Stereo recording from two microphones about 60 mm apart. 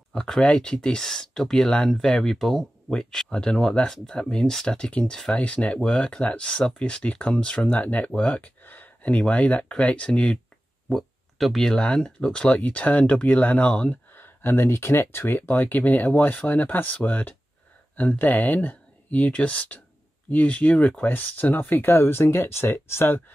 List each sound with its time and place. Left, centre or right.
0.1 s speech: centre
8.2 s a sound: left
9.2 s speech: left
10.9 s speech: centre
12.5 s speech: left